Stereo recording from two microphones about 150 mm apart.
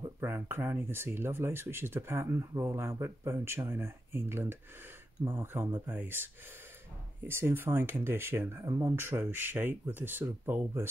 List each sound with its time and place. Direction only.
0.0 s speech: 15° right (ahead or behind)